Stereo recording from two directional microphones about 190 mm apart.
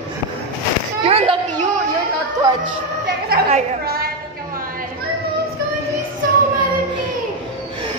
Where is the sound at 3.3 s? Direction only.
55° right (ahead or behind).